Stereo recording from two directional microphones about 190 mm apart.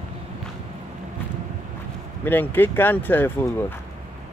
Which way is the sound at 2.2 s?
10° left (ahead or behind).